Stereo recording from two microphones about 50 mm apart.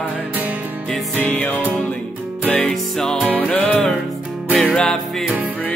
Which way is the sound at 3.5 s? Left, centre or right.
Left.